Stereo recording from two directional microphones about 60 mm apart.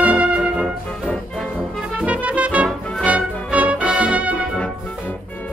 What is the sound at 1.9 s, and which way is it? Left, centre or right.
Music, right.